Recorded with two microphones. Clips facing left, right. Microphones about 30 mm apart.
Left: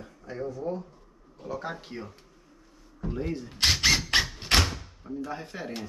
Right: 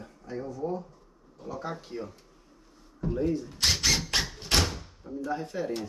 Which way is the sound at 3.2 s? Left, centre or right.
Left.